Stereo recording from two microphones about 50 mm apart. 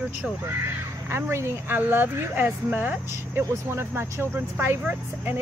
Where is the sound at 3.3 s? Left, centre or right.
Right.